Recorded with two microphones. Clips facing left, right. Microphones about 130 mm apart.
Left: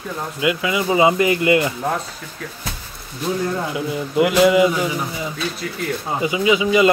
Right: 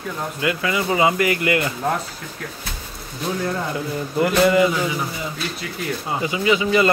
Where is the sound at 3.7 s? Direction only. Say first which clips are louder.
Left 2 dB; 10° left (ahead or behind).